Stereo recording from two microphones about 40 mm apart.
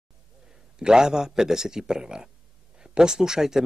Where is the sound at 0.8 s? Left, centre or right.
Centre.